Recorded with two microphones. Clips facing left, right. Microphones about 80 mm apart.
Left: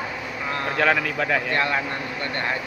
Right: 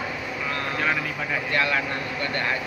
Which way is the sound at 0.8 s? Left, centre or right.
Left.